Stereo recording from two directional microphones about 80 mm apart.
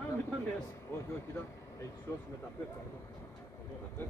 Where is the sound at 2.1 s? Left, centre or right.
Left.